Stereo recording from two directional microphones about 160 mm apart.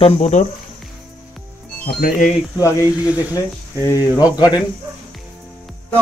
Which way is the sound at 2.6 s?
20° left (ahead or behind).